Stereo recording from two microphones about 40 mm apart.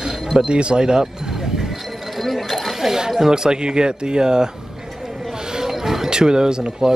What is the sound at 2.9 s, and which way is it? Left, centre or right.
Speech, centre.